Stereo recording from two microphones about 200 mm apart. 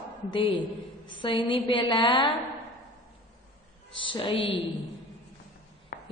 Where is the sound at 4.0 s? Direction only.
25° left (ahead or behind).